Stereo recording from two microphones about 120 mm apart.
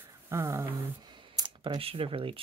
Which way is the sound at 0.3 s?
25° right (ahead or behind).